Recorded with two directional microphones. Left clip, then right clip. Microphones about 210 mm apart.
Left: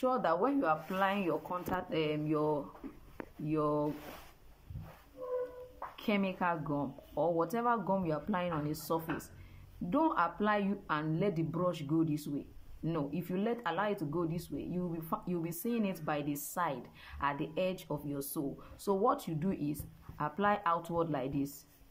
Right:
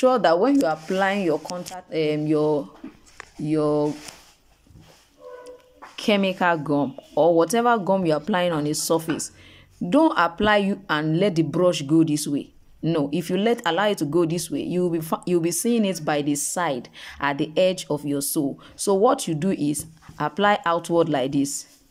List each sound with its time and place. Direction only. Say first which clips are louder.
0.0 s speech: right 13 dB; 35° right (ahead or behind)
5.9 s a woman's voice: right 14 dB; 35° right (ahead or behind)